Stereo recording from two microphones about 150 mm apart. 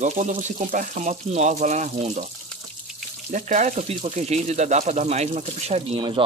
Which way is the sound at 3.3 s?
55° right (ahead or behind).